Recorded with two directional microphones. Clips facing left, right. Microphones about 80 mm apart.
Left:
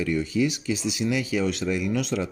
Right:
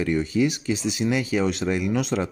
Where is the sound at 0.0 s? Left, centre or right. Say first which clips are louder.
Right 2 dB; right.